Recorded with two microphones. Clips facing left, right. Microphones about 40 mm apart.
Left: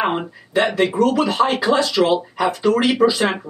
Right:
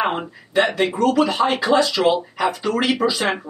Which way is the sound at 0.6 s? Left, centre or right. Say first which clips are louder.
Left 1 dB; centre.